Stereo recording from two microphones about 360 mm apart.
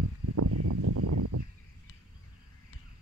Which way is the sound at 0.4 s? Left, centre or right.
Right.